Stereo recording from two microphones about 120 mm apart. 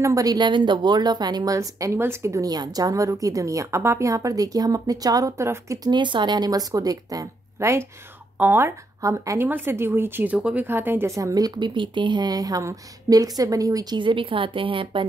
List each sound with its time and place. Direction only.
0.0 s a woman's voice: 30° right (ahead or behind)
5.9 s a woman's voice: 40° right (ahead or behind)